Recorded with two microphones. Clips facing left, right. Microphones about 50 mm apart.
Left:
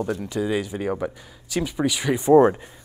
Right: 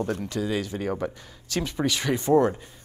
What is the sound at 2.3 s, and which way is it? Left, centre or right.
Speech, left.